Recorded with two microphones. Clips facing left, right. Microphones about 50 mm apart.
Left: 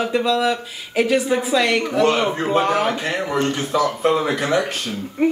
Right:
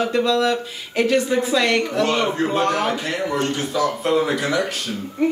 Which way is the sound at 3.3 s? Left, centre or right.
Left.